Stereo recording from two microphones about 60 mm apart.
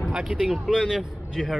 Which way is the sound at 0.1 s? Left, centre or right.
Centre.